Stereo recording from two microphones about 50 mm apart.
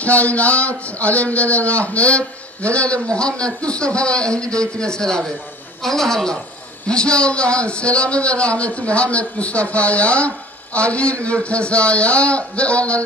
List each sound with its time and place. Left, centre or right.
0.0 s a man's voice: left